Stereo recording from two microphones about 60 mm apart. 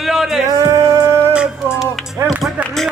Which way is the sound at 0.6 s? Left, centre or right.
Right.